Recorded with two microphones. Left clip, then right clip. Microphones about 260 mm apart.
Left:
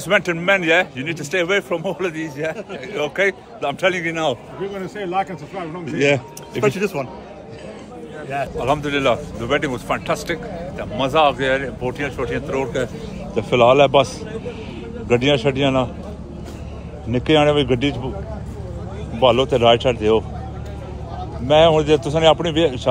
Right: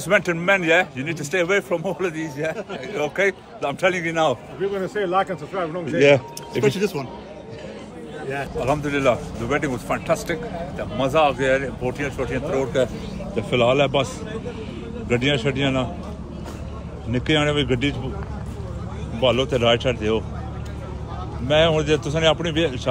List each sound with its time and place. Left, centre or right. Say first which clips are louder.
0.0 s a man's voice: left 2 dB; centre
8.3 s a man's voice: left 3 dB; centre
13.7 s a man's voice: left 6 dB; left
15.1 s a man's voice: left 4 dB; centre
17.7 s a man's voice: left 3 dB; centre
19.1 s a man's voice: left 5 dB; centre
21.5 s a man's voice: left 5 dB; centre